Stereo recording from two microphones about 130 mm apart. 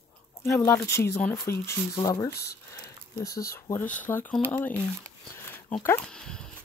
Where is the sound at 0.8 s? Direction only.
20° left (ahead or behind).